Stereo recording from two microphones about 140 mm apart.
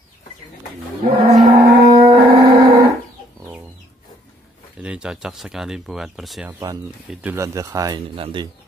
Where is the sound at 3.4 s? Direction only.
15° right (ahead or behind).